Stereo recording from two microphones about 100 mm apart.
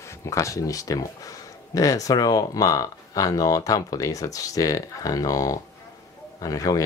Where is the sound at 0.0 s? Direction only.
30° left (ahead or behind).